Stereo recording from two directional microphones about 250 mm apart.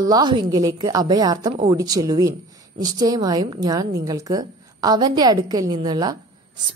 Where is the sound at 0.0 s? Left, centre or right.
Centre.